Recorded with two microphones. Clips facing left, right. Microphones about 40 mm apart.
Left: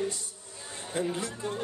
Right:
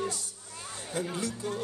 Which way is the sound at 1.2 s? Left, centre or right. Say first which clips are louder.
Even; left.